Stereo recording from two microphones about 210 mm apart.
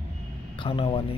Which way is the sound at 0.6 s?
25° left (ahead or behind).